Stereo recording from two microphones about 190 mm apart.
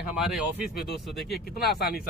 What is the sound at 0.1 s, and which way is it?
Speech, 5° right (ahead or behind).